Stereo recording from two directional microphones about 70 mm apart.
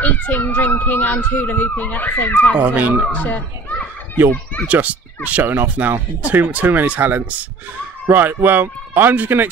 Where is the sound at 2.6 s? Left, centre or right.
Right.